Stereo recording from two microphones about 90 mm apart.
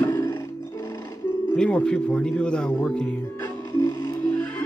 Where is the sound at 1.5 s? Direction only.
10° left (ahead or behind).